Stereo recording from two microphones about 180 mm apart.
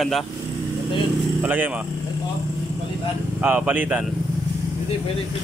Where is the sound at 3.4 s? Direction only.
10° right (ahead or behind).